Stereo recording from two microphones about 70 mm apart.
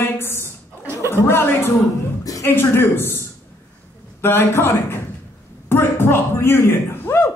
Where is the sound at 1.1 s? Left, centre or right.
Left.